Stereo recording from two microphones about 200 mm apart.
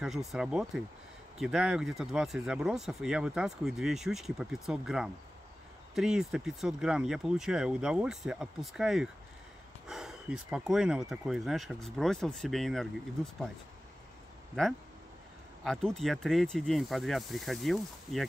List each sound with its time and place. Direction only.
0.0 s speech: centre (ahead or behind)
15.6 s speech: centre (ahead or behind)